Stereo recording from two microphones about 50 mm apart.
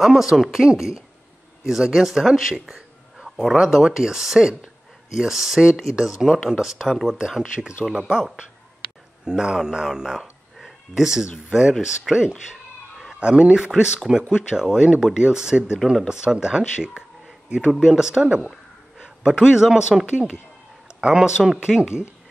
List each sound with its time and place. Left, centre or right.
0.0 s a man's voice: centre
6.9 s speech: centre
7.2 s speech: centre
9.2 s speech: centre
19.0 s a sound: centre
19.5 s speech: centre